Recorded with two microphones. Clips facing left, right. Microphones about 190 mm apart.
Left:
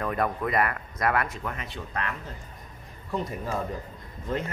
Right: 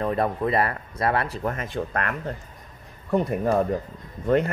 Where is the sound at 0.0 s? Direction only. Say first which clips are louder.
Right 4 dB; 30° right (ahead or behind).